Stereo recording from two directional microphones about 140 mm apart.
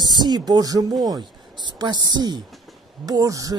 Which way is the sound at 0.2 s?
30° right (ahead or behind).